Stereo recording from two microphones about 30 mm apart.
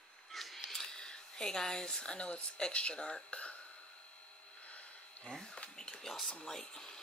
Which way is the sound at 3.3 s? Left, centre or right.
Left.